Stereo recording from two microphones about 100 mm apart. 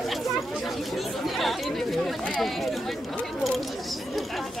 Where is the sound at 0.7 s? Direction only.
Centre (ahead or behind).